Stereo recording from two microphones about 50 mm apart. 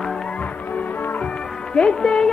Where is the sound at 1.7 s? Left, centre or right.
Centre.